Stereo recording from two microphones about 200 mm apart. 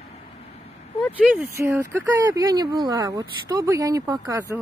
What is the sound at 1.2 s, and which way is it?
Speech, 5° right (ahead or behind).